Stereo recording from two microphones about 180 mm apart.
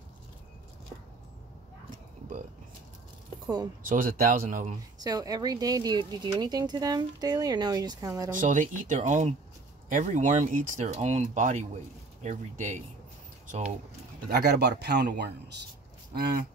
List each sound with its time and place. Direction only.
3.8 s speech: 50° right (ahead or behind)
4.9 s speech: 20° right (ahead or behind)
8.3 s speech: 45° right (ahead or behind)
14.3 s speech: 65° right (ahead or behind)